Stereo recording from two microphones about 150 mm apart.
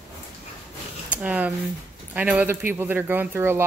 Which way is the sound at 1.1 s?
10° right (ahead or behind).